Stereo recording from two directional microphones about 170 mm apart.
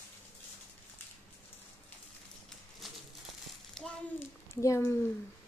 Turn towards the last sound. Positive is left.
turn(degrees=15)  # may be behind; listen again after turning